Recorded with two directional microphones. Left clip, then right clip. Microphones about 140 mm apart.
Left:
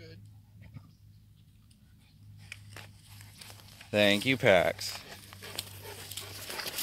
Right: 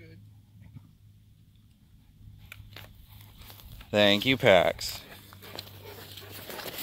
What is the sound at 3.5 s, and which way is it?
Speech, 15° right (ahead or behind).